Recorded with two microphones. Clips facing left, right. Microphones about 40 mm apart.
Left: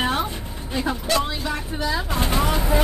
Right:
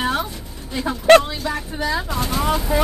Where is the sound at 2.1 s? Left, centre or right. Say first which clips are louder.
Even; left.